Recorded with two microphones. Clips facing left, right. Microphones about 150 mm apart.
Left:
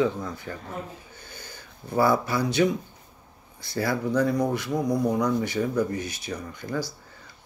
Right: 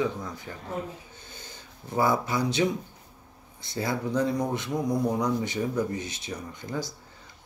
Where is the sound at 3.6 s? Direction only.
20° right (ahead or behind).